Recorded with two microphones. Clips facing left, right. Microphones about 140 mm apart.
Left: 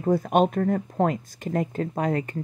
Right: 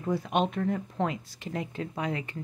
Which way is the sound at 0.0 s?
45° left (ahead or behind).